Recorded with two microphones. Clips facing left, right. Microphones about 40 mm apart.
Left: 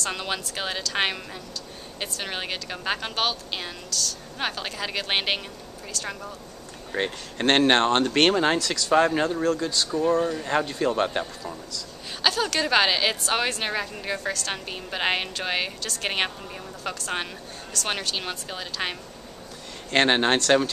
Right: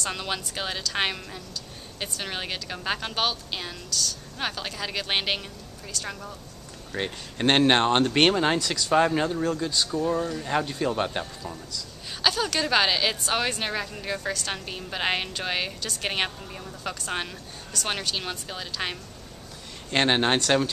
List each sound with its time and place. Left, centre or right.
0.0 s a woman's voice: centre
7.4 s speech: centre
9.8 s a woman's voice: centre
10.4 s a woman's voice: centre